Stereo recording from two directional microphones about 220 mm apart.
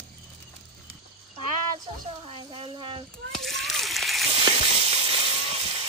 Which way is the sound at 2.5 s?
25° right (ahead or behind).